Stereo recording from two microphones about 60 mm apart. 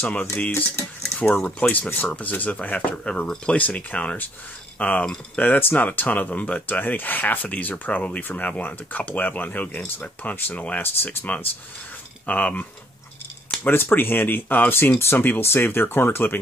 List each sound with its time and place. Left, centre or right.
0.0 s speech: left
1.0 s a sound: centre
1.6 s speech: left
5.0 s speech: centre
5.4 s speech: left
13.7 s speech: left